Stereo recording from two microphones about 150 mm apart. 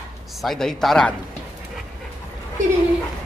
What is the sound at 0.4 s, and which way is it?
Speech, centre (ahead or behind).